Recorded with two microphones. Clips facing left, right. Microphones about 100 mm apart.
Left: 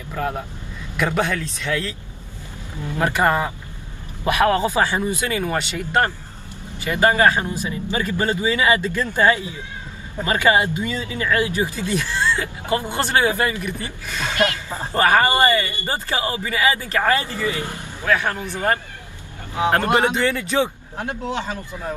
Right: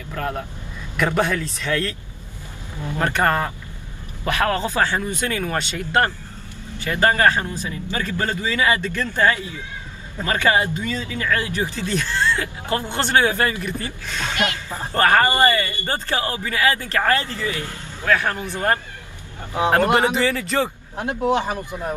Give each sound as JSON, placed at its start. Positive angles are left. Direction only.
{"t": 0.1, "sound": "speech", "side_deg": 10}
{"t": 3.0, "sound": "speech", "side_deg": 10}
{"t": 6.8, "sound": "speech", "side_deg": 15}
{"t": 14.3, "sound": "speech", "side_deg": -20}
{"t": 14.7, "sound": "speech", "side_deg": 15}
{"t": 15.0, "sound": "speech", "side_deg": 5}
{"t": 20.2, "sound": "speech", "side_deg": 0}
{"t": 21.0, "sound": "speech", "side_deg": -20}